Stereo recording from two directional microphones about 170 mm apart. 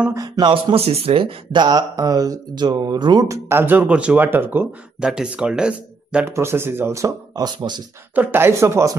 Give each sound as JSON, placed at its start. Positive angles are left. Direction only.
{"t": 0.1, "sound": "speech", "side_deg": -25}
{"t": 8.1, "sound": "speech", "side_deg": -10}